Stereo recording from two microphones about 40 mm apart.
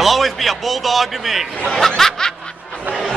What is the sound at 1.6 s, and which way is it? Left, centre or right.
Speech, centre.